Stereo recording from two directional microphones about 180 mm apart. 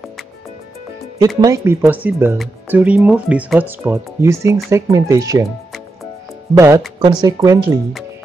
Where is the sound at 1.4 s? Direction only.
15° right (ahead or behind).